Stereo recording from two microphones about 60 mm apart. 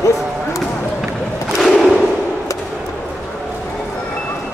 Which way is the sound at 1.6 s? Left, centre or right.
Centre.